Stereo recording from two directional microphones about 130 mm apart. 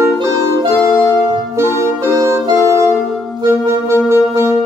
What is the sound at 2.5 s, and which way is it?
Music, 25° left (ahead or behind).